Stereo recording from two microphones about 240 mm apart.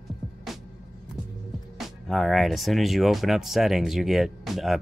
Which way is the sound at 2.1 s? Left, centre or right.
Centre.